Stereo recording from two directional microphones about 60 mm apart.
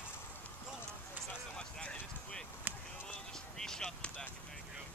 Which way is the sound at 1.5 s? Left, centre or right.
Centre.